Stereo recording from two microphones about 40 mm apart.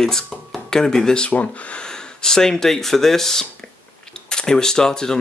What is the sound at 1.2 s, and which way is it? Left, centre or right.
Speech, left.